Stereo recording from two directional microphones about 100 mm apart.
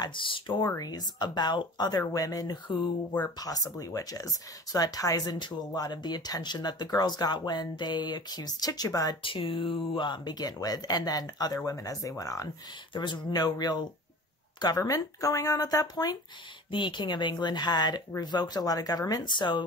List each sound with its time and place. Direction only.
0.0 s speech: 55° left (ahead or behind)
0.6 s speech: 35° left (ahead or behind)
9.2 s speech: 60° left (ahead or behind); by 12.4 s 35° left (ahead or behind)
12.9 s speech: 50° left (ahead or behind)
16.7 s speech: 50° left (ahead or behind)